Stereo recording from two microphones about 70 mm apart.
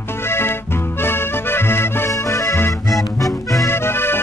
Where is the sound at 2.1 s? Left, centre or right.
Left.